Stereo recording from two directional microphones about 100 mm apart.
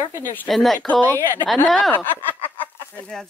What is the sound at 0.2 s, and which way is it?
Speech, 20° left (ahead or behind).